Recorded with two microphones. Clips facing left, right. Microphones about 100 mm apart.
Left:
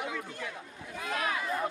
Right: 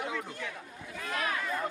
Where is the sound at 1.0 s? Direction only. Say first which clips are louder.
Left 1 dB; 20° left (ahead or behind).